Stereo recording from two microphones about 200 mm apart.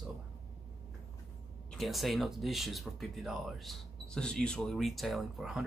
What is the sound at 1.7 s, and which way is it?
Speech, centre (ahead or behind).